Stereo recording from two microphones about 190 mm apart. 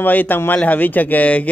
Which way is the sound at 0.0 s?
10° left (ahead or behind).